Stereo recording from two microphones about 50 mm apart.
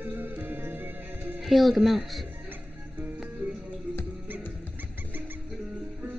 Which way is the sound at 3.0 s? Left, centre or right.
Centre.